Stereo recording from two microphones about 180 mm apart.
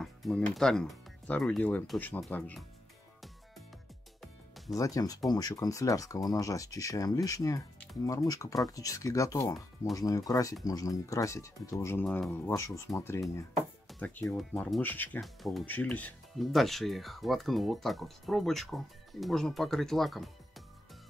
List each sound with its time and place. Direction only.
0.0 s speech: centre (ahead or behind)
4.2 s music: centre (ahead or behind)
4.7 s speech: 20° left (ahead or behind)
12.0 s speech: 5° left (ahead or behind)
12.4 s speech: 15° left (ahead or behind); by 20.6 s centre (ahead or behind)